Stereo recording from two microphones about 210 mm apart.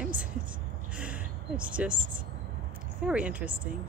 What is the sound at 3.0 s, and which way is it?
Speech, 5° right (ahead or behind).